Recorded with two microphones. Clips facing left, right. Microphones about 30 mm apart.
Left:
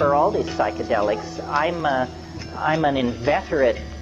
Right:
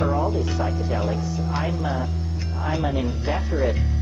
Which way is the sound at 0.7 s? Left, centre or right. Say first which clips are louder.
Left 5 dB; centre.